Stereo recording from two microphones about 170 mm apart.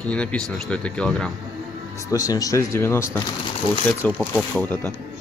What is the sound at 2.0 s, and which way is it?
Speech, 20° left (ahead or behind).